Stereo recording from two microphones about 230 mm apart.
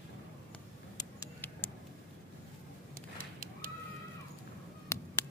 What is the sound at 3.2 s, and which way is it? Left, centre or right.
Fowl, right.